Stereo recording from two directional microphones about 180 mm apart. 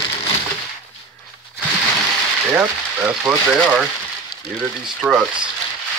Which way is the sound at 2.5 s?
10° right (ahead or behind).